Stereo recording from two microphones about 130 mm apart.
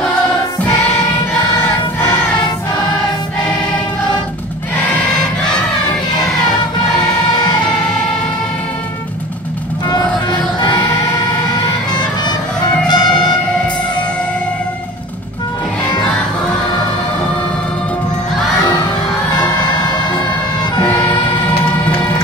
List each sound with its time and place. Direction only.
12.8 s music: 35° left (ahead or behind)